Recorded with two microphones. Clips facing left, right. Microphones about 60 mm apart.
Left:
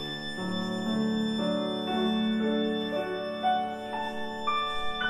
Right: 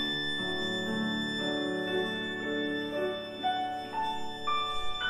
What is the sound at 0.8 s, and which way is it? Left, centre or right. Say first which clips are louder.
Music: left 4 dB; right.